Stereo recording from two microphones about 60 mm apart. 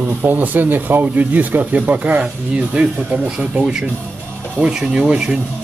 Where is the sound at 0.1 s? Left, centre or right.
Right.